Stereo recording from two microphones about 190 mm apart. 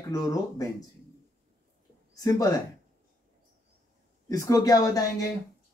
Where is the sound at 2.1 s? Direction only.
20° left (ahead or behind).